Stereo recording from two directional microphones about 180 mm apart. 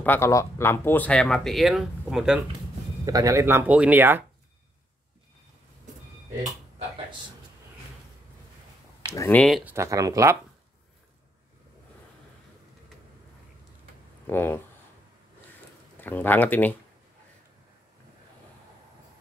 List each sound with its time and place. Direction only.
0.0 s speech: 10° left (ahead or behind); by 2.4 s 5° right (ahead or behind)
3.1 s speech: 20° right (ahead or behind)
9.0 s speech: 15° left (ahead or behind)
9.7 s speech: 15° right (ahead or behind)
14.2 s speech: 10° left (ahead or behind)
16.0 s speech: 10° left (ahead or behind)